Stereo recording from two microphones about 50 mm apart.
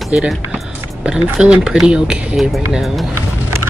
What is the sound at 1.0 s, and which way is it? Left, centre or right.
Speech, centre.